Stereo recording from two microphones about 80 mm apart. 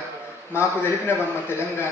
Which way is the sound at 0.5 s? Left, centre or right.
Left.